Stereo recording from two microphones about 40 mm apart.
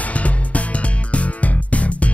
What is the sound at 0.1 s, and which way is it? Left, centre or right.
Music, left.